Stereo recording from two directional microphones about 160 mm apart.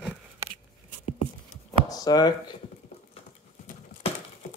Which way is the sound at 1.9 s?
25° left (ahead or behind).